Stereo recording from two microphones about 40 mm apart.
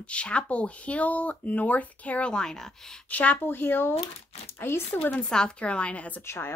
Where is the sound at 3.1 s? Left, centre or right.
Left.